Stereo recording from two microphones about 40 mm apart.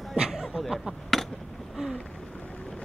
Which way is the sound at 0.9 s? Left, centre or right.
Centre.